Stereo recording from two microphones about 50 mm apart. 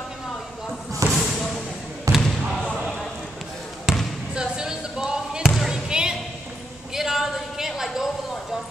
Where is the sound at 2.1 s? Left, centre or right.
Right.